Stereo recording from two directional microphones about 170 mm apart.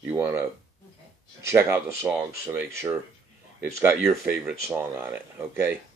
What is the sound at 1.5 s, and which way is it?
Speech, 15° right (ahead or behind).